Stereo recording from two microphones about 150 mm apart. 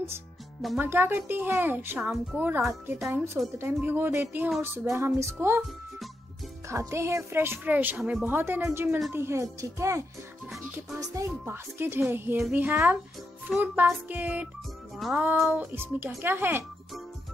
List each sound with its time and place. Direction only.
0.7 s speech: 15° right (ahead or behind)
6.7 s a child's voice: 20° right (ahead or behind)
15.0 s music: centre (ahead or behind)
15.2 s speech: 5° right (ahead or behind)